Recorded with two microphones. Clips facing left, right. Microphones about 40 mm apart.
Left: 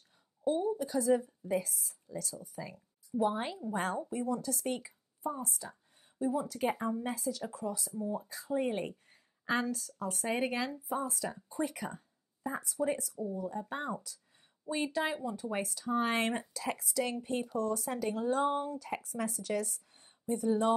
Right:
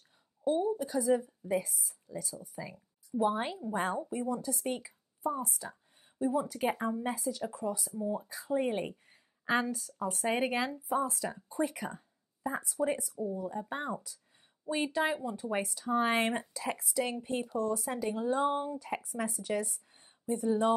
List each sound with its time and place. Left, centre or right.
0.4 s a woman's voice: centre
12.4 s a sound: centre
12.8 s speech: centre
17.6 s speech: right